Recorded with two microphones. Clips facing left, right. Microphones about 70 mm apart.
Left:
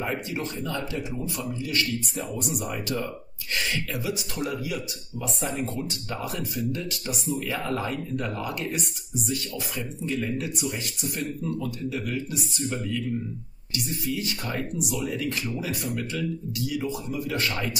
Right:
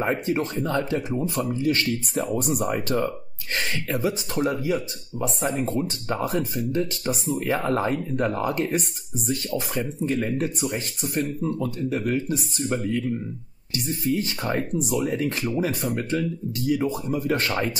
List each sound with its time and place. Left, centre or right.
0.0 s speech: right